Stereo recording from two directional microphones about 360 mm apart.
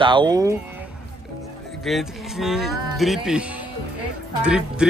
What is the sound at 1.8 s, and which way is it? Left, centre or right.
Speech, centre.